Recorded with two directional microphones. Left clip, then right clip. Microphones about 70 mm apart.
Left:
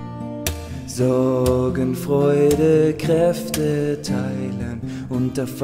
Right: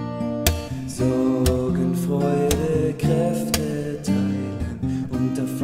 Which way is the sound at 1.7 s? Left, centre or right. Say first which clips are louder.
Left 4 dB; left.